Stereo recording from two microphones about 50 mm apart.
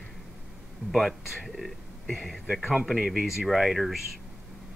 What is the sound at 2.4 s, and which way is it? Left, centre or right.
Speech, centre.